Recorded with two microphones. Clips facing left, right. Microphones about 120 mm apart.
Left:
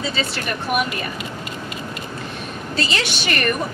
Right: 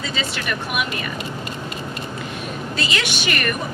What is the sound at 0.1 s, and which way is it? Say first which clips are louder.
Speech: left 1 dB; 35° left (ahead or behind).